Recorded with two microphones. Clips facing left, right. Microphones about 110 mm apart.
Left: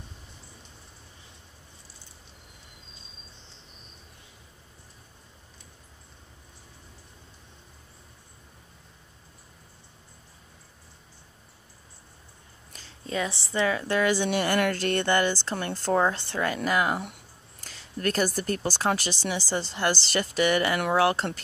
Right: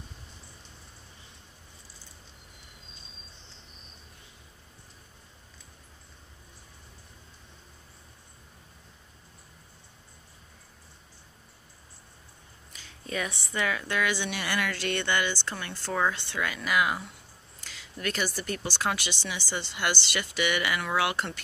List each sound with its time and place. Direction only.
12.7 s a woman's voice: 30° left (ahead or behind)